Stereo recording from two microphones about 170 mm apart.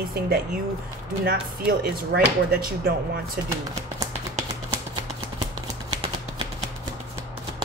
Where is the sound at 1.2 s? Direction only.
65° right (ahead or behind).